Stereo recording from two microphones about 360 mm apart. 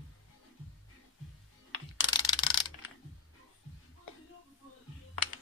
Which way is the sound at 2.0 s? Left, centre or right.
Centre.